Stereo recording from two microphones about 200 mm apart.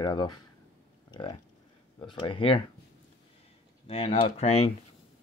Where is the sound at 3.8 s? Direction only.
30° left (ahead or behind).